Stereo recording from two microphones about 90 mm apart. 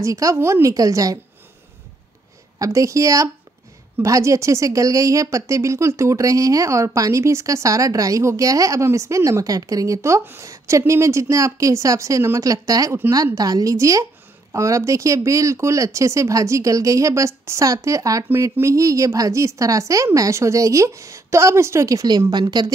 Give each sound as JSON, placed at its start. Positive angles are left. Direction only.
{"t": 0.0, "sound": "speech", "side_deg": -35}
{"t": 2.6, "sound": "speech", "side_deg": -35}
{"t": 22.3, "sound": "a woman's voice", "side_deg": -55}